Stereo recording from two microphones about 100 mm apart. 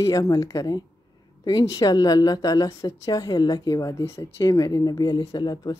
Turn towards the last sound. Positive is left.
turn(degrees=40)  # may be behind; listen again after turning